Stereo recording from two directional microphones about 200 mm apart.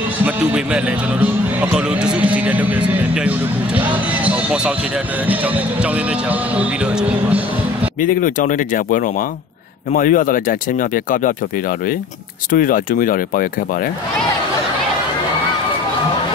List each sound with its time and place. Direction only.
0.2 s speech: 5° right (ahead or behind)
8.0 s speech: 40° left (ahead or behind)
12.4 s speech: 45° left (ahead or behind)